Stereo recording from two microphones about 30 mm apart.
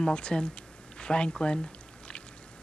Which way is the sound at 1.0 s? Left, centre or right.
Left.